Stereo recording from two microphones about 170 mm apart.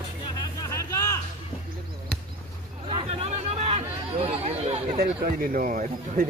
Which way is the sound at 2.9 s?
35° right (ahead or behind).